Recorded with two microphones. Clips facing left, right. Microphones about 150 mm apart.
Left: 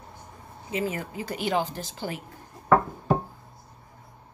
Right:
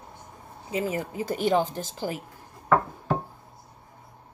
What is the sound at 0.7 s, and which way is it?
Speech, 35° right (ahead or behind).